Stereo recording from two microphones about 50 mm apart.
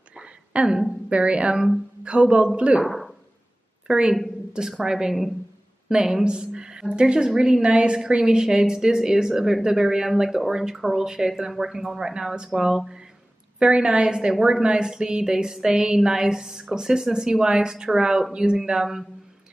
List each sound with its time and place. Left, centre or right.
0.2 s a sound: right
1.1 s a man's voice: right
2.8 s speech: centre
3.8 s a woman's voice: centre